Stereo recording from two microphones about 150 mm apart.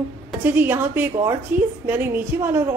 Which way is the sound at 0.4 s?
15° right (ahead or behind).